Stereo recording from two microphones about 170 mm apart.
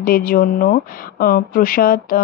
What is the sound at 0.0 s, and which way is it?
Speech, 60° left (ahead or behind).